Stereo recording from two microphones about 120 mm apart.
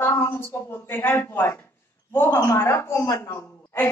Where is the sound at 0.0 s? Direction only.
25° left (ahead or behind).